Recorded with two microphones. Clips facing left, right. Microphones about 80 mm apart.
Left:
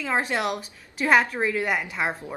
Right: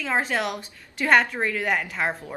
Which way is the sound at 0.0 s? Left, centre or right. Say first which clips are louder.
Even; centre.